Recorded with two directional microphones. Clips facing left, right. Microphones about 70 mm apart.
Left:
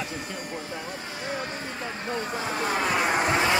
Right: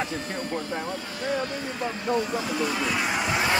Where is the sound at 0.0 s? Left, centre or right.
Right.